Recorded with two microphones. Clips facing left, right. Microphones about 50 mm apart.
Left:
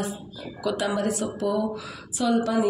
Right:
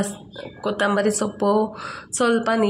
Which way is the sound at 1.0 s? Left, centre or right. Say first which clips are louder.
Right 5 dB; right.